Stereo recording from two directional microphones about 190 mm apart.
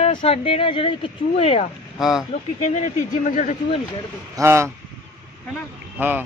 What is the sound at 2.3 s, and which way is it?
Speech, 40° left (ahead or behind).